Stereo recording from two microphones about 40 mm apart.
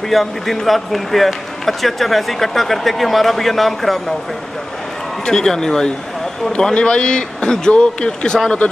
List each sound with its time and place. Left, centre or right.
0.1 s speech: centre
5.2 s speech: centre
6.5 s speech: left